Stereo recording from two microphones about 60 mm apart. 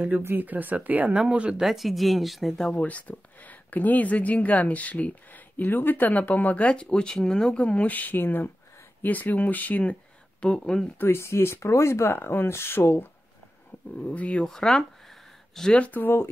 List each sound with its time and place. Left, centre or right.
0.4 s speech: right
1.6 s speech: centre
2.7 s speech: left
10.4 s speech: centre
11.0 s speech: left
14.0 s speech: left
14.4 s a sound: centre
15.8 s speech: left